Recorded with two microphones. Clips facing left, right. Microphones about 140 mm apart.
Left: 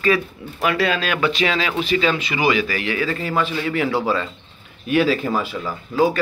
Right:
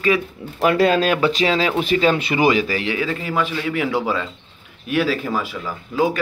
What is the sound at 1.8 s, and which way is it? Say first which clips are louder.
A man's voice: right 2 dB; 45° right (ahead or behind).